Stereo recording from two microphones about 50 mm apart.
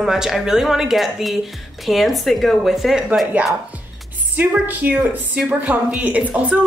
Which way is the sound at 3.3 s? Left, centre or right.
Right.